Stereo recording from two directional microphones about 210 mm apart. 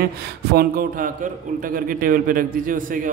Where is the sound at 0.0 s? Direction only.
45° right (ahead or behind).